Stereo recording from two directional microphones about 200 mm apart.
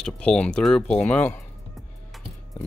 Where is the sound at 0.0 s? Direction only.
5° left (ahead or behind).